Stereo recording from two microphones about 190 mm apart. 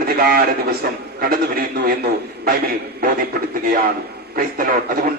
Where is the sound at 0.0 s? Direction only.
55° right (ahead or behind).